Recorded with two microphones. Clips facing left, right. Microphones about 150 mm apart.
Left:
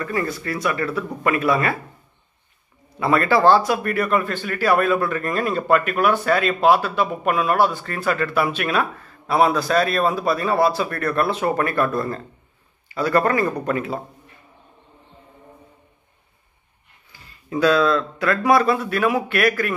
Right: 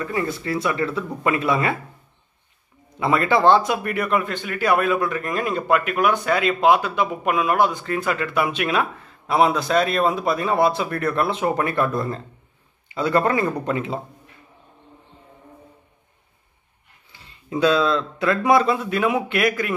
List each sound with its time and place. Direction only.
0.0 s speech: 20° right (ahead or behind)
3.0 s a man's voice: 20° right (ahead or behind)
17.1 s speech: 25° right (ahead or behind)